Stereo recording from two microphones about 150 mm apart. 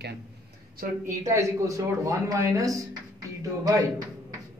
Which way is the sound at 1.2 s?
20° right (ahead or behind).